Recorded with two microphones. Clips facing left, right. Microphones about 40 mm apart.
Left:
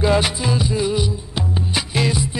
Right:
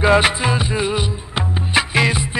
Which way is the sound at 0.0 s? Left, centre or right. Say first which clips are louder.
Right 4 dB; right.